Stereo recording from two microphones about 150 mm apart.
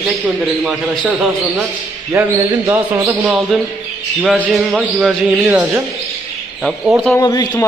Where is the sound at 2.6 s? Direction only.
10° right (ahead or behind).